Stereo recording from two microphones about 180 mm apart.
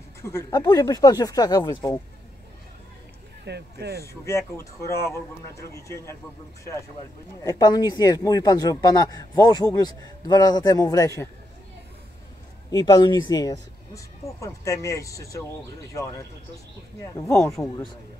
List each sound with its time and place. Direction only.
0.2 s a man's voice: 15° left (ahead or behind)
3.4 s speech: 65° right (ahead or behind)
4.1 s speech: 15° left (ahead or behind)
7.4 s a man's voice: 20° left (ahead or behind)
12.7 s a man's voice: 20° left (ahead or behind)